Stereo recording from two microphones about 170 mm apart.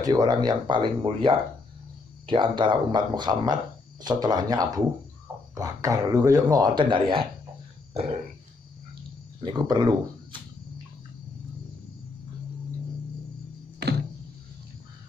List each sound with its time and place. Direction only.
0.0 s speech: 25° right (ahead or behind)
7.9 s burping: 35° right (ahead or behind)
9.4 s speech: 25° right (ahead or behind)